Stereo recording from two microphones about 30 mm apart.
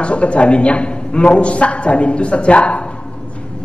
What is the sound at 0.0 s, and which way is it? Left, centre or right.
A woman's voice, left.